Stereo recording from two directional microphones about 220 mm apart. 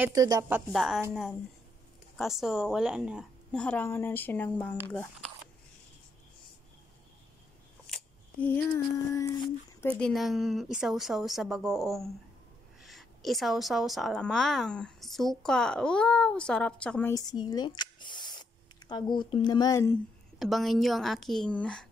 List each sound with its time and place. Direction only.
0.0 s a woman's voice: 15° right (ahead or behind)
2.1 s a woman's voice: centre (ahead or behind)
7.8 s a sound: 5° left (ahead or behind)
9.9 s a woman's voice: centre (ahead or behind)
17.1 s speech: 20° left (ahead or behind)
20.3 s a woman's voice: centre (ahead or behind)